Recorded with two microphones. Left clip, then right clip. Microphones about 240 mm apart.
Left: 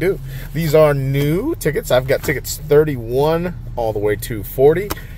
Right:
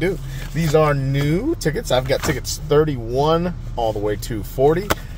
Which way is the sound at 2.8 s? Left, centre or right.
Left.